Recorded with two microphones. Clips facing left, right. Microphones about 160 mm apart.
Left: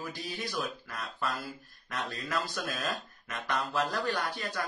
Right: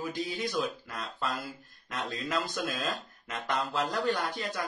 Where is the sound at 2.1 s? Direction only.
20° right (ahead or behind).